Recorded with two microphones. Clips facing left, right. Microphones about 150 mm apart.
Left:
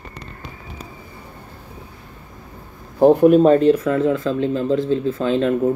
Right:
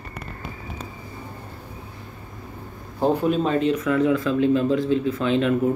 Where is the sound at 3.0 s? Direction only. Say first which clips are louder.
Left 9 dB; 55° left (ahead or behind).